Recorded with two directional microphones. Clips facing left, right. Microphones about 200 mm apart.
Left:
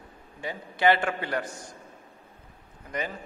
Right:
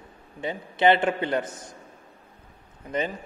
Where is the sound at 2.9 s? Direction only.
25° right (ahead or behind).